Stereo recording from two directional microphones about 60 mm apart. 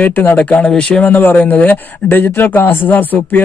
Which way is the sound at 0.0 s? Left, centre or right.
Left.